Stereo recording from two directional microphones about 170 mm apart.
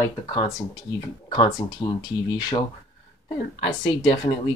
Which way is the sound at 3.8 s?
30° left (ahead or behind).